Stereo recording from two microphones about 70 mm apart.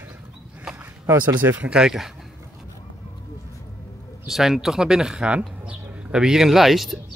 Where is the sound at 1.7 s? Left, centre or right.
Centre.